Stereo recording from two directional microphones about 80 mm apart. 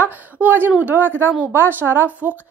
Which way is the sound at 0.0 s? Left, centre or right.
Right.